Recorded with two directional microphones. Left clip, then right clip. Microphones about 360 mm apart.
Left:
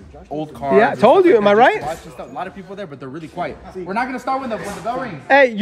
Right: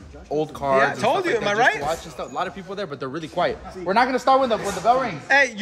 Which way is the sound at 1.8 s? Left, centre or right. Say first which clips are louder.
Right 1 dB; centre.